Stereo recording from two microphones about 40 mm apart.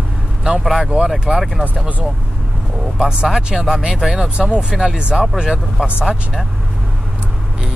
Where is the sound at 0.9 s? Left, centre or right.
Right.